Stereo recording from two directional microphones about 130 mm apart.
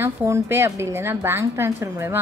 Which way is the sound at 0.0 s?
20° right (ahead or behind).